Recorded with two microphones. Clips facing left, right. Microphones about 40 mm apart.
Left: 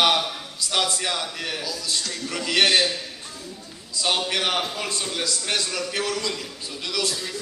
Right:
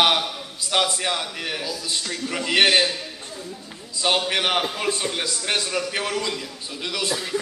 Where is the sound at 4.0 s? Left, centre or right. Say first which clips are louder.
Right 2 dB; centre.